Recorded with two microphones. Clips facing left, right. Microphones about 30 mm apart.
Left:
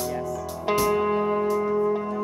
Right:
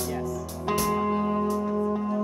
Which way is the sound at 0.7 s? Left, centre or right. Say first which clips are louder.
Left 3 dB; centre.